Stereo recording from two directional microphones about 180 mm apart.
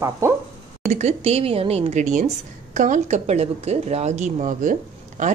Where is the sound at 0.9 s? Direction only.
40° right (ahead or behind).